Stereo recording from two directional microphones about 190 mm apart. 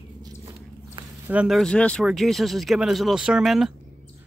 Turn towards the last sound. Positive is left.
turn(degrees=0)  # may be behind; listen again after turning